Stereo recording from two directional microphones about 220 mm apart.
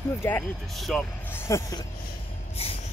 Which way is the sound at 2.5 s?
25° left (ahead or behind).